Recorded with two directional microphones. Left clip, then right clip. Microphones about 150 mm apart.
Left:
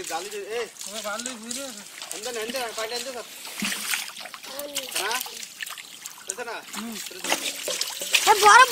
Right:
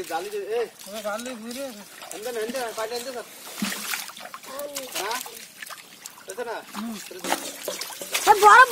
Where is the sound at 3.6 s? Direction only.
5° left (ahead or behind).